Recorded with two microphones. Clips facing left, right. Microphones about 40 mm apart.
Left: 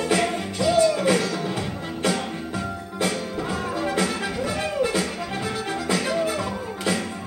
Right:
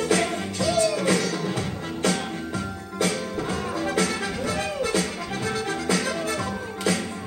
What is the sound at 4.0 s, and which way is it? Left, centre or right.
Music, centre.